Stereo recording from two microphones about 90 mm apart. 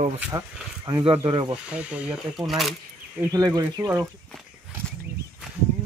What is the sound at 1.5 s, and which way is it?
Speech, 15° right (ahead or behind).